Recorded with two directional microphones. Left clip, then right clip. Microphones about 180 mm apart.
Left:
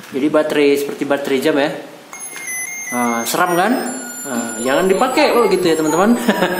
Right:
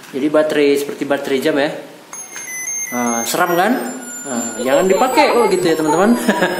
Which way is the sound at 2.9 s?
Centre (ahead or behind).